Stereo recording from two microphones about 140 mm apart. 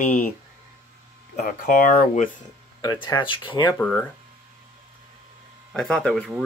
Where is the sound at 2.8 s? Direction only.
30° left (ahead or behind).